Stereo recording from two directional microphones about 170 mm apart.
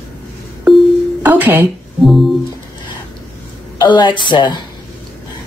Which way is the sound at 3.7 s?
25° left (ahead or behind).